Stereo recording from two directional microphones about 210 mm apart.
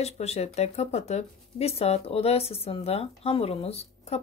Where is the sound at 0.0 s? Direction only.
30° left (ahead or behind).